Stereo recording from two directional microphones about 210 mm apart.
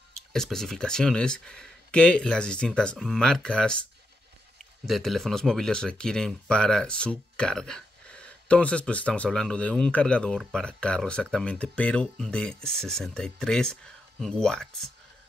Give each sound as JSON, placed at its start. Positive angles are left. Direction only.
{"t": 0.3, "sound": "speech", "side_deg": 0}